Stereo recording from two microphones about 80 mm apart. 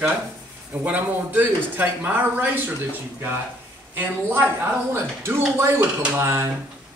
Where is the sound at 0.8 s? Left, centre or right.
Right.